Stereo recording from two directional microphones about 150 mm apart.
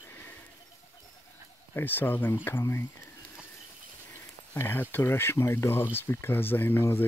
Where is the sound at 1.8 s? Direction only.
15° left (ahead or behind).